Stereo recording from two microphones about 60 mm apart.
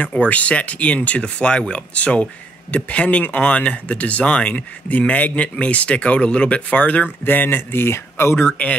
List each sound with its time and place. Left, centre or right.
0.0 s speech: left